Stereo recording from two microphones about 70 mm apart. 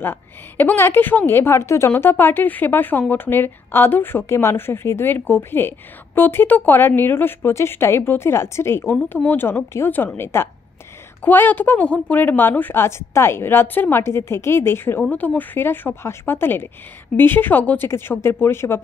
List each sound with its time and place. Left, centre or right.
0.0 s a woman's voice: left